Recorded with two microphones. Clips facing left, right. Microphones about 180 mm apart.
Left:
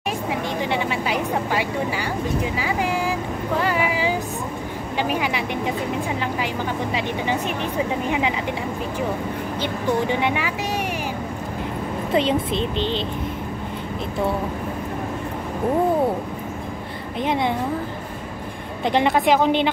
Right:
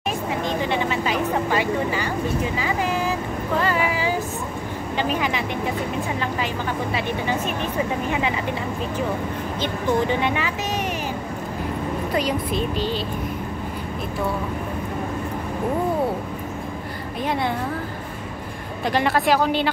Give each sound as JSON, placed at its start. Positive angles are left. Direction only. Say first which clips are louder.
{"t": 0.6, "sound": "vehicle", "louder": "even", "side_deg": 10}
{"t": 4.9, "sound": "speech", "louder": "even", "side_deg": 15}
{"t": 9.6, "sound": "speech", "louder": "right 1 dB", "side_deg": 15}
{"t": 12.1, "sound": "speech", "louder": "left 5 dB", "side_deg": 25}
{"t": 17.2, "sound": "speech", "louder": "left 2 dB", "side_deg": 20}
{"t": 18.9, "sound": "speech", "louder": "left 2 dB", "side_deg": 20}